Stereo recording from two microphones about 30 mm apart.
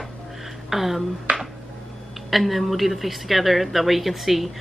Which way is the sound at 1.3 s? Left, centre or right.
Right.